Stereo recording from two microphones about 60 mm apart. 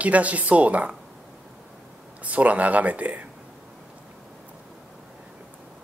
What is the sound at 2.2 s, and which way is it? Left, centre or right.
Speech, right.